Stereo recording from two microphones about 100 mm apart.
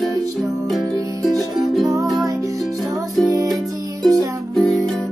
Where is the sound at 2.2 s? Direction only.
30° right (ahead or behind).